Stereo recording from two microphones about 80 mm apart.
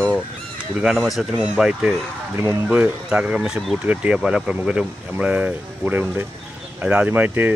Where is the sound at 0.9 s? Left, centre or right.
Centre.